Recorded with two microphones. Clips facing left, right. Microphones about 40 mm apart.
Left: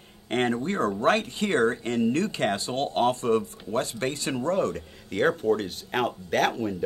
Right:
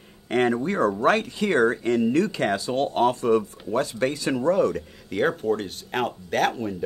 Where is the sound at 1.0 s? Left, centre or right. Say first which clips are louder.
Even; left.